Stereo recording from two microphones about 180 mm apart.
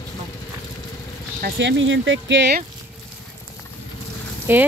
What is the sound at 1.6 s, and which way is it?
Speech, 90° right.